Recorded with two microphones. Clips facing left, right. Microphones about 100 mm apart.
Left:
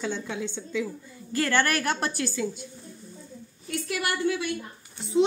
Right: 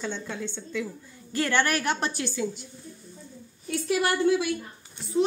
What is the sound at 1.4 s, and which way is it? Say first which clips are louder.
A woman's voice: even; 10° right (ahead or behind).